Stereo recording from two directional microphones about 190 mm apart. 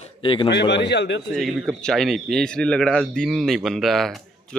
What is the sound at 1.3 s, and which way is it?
Speech, centre (ahead or behind).